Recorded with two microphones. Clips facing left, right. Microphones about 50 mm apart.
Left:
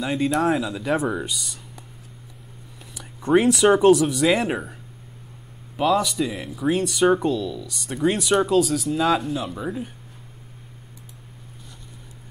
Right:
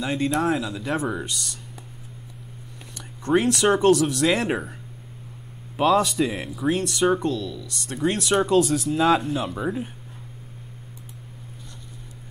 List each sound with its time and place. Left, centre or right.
0.0 s speech: centre
2.9 s speech: centre
5.8 s speech: centre
6.1 s speech: centre
6.5 s speech: centre